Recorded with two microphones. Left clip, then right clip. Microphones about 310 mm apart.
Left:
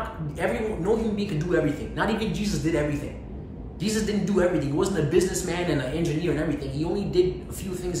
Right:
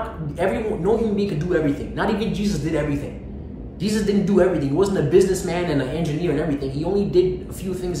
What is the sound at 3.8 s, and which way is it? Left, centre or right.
A man's voice, centre.